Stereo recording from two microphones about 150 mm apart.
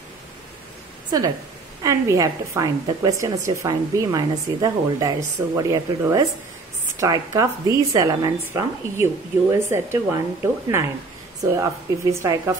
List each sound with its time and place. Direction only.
1.1 s a woman's voice: 25° right (ahead or behind)